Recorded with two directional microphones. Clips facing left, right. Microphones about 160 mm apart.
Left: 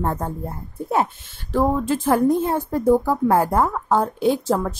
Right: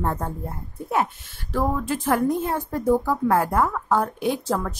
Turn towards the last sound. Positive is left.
turn(degrees=25)  # may be behind; listen again after turning